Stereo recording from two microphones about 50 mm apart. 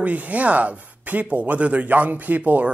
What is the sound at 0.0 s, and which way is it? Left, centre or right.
Speech, right.